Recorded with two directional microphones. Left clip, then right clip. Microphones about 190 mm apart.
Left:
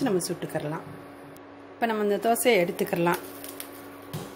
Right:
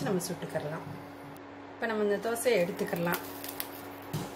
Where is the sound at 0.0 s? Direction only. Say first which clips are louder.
Left 6 dB; 45° left (ahead or behind).